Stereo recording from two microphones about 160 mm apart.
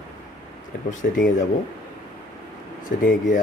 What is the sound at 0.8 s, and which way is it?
Speech, 55° left (ahead or behind).